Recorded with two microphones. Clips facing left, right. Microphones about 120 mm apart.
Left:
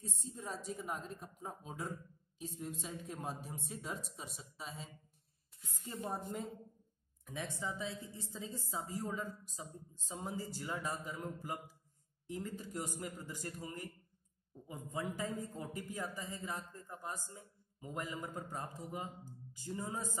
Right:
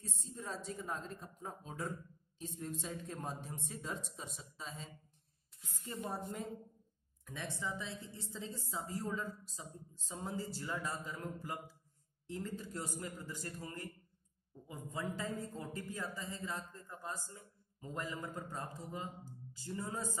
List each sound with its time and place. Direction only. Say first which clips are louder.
0.2 s a man's voice: right 1 dB; 15° left (ahead or behind)
7.2 s a woman's voice: left 1 dB; 15° left (ahead or behind)